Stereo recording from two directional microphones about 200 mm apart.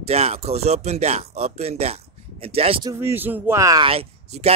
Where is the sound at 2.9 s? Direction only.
10° right (ahead or behind); by 4.6 s 30° right (ahead or behind).